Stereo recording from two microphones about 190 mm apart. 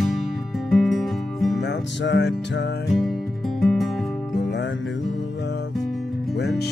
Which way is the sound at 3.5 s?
Centre (ahead or behind).